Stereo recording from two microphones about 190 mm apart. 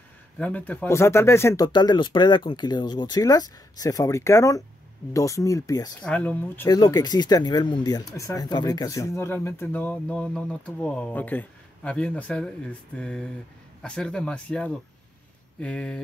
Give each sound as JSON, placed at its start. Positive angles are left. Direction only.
{"t": 0.4, "sound": "speech", "side_deg": 10}
{"t": 6.0, "sound": "speech", "side_deg": 5}